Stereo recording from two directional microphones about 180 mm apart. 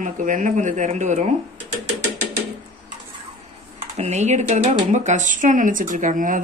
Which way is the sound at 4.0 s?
40° right (ahead or behind).